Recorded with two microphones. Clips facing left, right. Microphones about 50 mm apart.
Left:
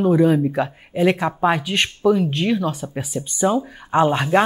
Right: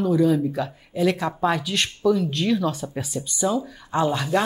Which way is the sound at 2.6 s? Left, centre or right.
Centre.